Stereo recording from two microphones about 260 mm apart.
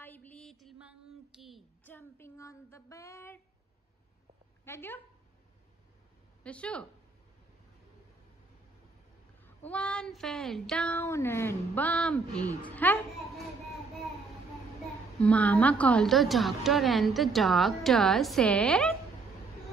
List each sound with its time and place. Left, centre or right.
0.0 s a sound: centre
4.6 s speech: centre
6.4 s a woman's voice: centre
9.7 s a woman's voice: centre
15.1 s a woman's voice: centre